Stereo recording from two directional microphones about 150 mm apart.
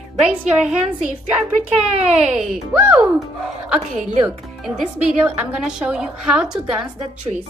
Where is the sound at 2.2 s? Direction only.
5° right (ahead or behind).